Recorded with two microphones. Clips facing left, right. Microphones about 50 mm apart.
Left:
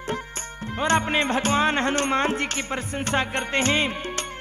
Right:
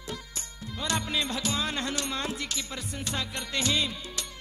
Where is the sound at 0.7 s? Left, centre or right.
Left.